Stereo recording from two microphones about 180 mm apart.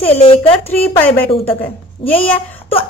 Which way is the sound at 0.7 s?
10° left (ahead or behind).